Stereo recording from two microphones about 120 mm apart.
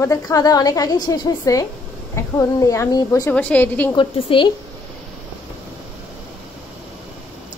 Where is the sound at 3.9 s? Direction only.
45° left (ahead or behind).